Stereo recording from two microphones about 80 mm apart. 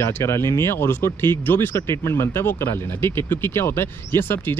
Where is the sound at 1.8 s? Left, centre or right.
Left.